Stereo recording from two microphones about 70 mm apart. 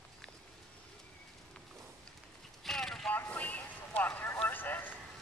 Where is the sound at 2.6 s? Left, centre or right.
Centre.